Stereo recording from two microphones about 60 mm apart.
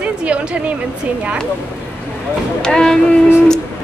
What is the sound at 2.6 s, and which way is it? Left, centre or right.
Speech, centre.